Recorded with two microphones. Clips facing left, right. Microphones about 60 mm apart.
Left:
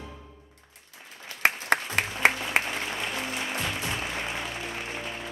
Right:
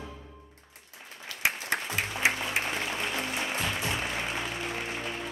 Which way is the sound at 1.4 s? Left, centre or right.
Left.